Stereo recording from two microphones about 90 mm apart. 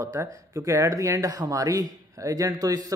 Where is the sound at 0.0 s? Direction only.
35° right (ahead or behind).